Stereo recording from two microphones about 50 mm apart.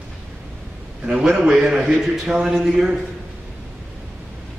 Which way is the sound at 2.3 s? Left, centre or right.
Right.